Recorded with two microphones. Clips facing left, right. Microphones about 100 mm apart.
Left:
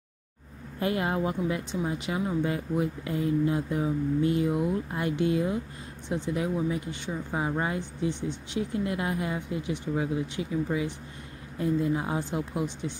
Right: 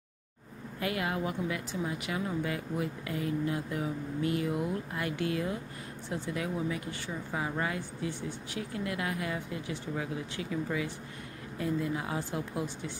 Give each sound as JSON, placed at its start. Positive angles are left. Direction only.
{"t": 0.7, "sound": "speech", "side_deg": 30}